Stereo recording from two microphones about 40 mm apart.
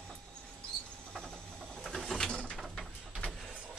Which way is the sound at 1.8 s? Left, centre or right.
Centre.